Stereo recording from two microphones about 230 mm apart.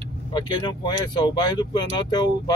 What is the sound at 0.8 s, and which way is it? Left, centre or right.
Speech, centre.